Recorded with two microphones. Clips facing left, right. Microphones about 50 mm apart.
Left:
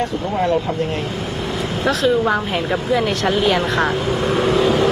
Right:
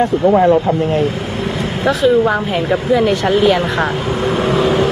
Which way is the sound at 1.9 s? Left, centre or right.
Centre.